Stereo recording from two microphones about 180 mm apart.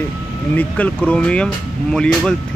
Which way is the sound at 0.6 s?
10° left (ahead or behind).